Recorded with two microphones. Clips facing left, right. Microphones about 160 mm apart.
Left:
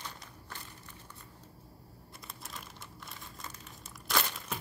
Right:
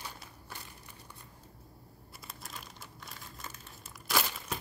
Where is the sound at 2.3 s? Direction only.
Centre (ahead or behind).